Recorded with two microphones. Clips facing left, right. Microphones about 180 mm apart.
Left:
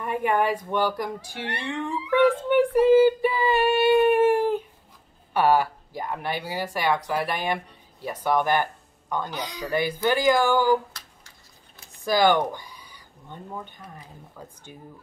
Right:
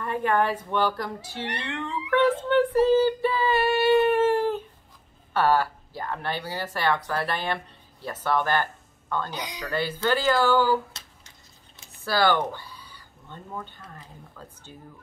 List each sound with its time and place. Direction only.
0.0 s speech: 15° left (ahead or behind)
1.6 s cat: 10° left (ahead or behind)
5.3 s speech: 15° left (ahead or behind)
9.3 s speech: 15° right (ahead or behind)
9.6 s speech: 15° left (ahead or behind)
10.9 s a sound: 25° right (ahead or behind)
12.0 s speech: 15° left (ahead or behind)